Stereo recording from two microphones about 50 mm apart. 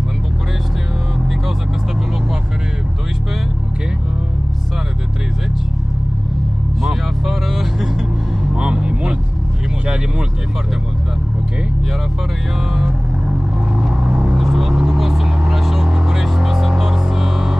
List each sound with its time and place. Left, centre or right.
6.8 s music: centre
8.5 s vehicle: centre
14.0 s vehicle: right
14.3 s vehicle: centre